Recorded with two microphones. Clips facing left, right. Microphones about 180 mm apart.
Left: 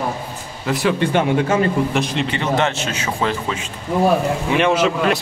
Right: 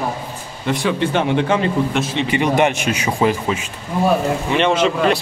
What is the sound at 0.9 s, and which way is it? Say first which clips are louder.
Speech: even; 50° left (ahead or behind).